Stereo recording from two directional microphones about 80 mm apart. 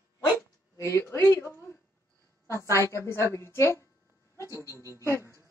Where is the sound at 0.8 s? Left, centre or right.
Left.